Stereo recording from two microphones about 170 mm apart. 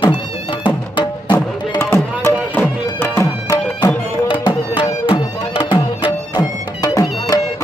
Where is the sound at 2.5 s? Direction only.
10° left (ahead or behind).